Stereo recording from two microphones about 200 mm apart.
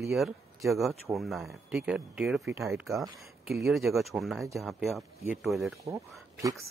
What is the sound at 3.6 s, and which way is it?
Speech, centre (ahead or behind).